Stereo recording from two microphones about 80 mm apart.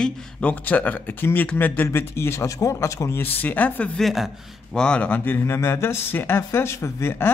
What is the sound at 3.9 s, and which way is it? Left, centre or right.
Speech, centre.